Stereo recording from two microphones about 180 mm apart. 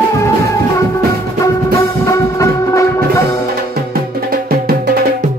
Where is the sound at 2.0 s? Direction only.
15° left (ahead or behind).